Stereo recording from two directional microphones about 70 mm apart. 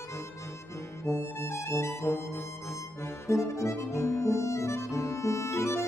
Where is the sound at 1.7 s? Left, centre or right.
Left.